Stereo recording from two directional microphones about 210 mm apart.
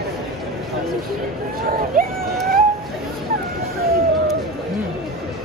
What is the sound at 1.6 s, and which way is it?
Speech, 45° right (ahead or behind).